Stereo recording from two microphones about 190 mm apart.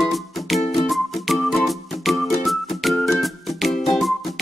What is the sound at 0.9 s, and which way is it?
Music, centre (ahead or behind).